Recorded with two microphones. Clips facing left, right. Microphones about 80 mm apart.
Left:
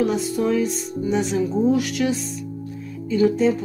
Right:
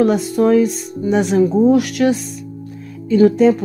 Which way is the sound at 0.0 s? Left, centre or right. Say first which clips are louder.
Right 7 dB; right.